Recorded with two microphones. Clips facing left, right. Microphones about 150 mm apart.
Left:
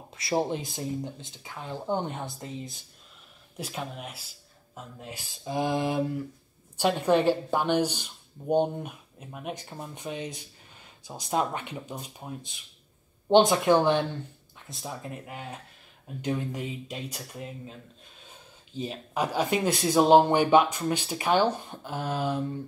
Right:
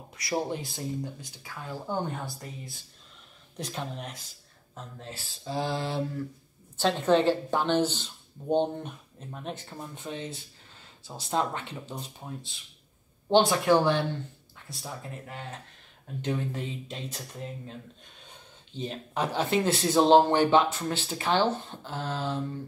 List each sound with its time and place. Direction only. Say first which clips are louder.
0.1 s speech: left 3 dB; 25° left (ahead or behind)
3.5 s speech: even; 5° left (ahead or behind)